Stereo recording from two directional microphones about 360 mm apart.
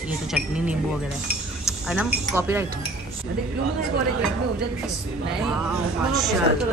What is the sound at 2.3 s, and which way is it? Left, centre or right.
Speech, centre.